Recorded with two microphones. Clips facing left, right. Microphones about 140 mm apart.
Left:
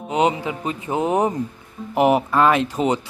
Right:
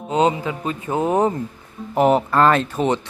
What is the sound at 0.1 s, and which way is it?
Speech, 15° left (ahead or behind).